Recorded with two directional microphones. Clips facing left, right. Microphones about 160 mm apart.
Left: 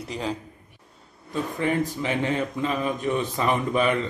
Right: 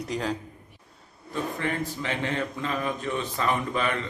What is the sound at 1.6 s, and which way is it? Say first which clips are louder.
A man's voice: left 5 dB; 15° left (ahead or behind).